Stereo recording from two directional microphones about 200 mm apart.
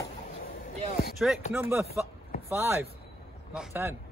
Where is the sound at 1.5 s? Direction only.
10° right (ahead or behind).